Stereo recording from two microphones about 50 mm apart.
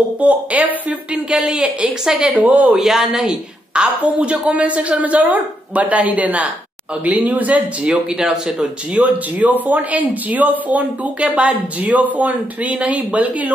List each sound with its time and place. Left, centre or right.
0.2 s a woman's voice: right
1.1 s a woman's voice: centre
2.4 s speech: right
2.7 s speech: centre
3.7 s a woman's voice: right
7.8 s a woman's voice: centre
9.0 s speech: right